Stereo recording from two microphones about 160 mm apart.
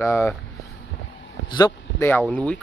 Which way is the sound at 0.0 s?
15° left (ahead or behind).